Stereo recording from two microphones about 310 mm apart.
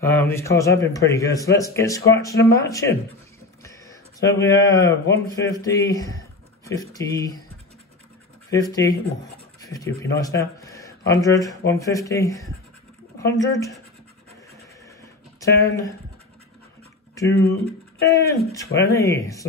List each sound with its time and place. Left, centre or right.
0.0 s a man's voice: centre
9.7 s a man's voice: centre
15.4 s a man's voice: centre
17.3 s speech: left
18.0 s a man's voice: centre